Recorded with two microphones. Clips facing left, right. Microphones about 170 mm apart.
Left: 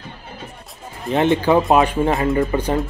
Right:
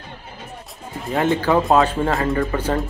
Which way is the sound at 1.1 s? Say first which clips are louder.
Left 2 dB; 20° left (ahead or behind).